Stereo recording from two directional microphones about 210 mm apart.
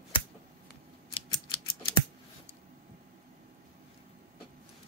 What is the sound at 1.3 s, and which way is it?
Scissors, 20° left (ahead or behind).